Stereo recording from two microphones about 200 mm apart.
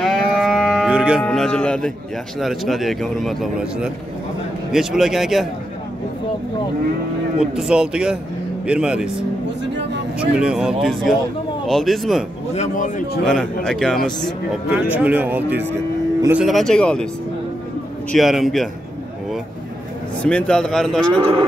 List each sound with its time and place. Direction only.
0.0 s moo: centre (ahead or behind)
1.2 s a man's voice: 5° left (ahead or behind)
7.5 s a man's voice: 5° right (ahead or behind)
10.4 s a man's voice: 5° right (ahead or behind)
12.5 s a man's voice: 40° left (ahead or behind)
13.2 s a man's voice: 5° left (ahead or behind)
14.9 s a man's voice: 10° right (ahead or behind)
18.1 s a man's voice: centre (ahead or behind)
20.2 s a man's voice: 5° left (ahead or behind)